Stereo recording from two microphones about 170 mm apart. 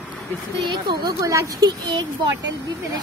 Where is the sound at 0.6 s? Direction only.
25° right (ahead or behind).